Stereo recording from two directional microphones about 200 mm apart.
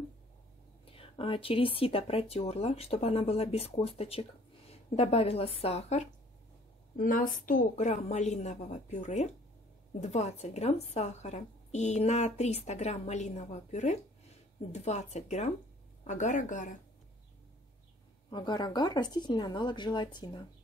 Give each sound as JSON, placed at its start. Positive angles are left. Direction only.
{"t": 0.8, "sound": "a woman's voice", "side_deg": 25}
{"t": 18.3, "sound": "speech", "side_deg": 20}